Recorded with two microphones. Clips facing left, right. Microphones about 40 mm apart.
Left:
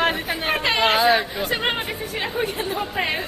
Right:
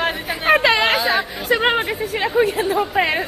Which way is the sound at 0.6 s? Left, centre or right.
Right.